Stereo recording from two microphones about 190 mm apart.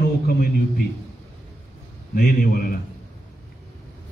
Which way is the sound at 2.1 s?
50° left (ahead or behind).